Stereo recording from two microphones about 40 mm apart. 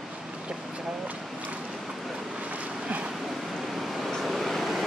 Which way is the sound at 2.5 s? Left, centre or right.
Right.